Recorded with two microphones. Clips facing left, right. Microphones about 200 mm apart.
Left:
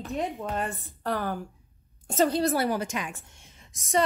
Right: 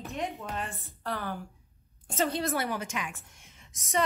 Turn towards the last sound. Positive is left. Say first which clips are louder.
# left 5 dB
turn(degrees=30)  # may be behind; listen again after turning